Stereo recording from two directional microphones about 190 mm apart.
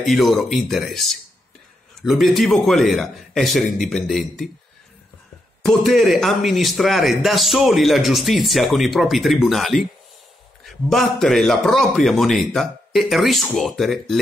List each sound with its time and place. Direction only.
0.0 s a man's voice: centre (ahead or behind)
3.6 s speech: 40° left (ahead or behind)
3.9 s a man's voice: centre (ahead or behind)
5.6 s a man's voice: centre (ahead or behind)